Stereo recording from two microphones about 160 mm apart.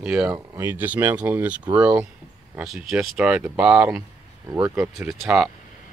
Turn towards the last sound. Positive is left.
turn(degrees=0)  # may be behind; listen again after turning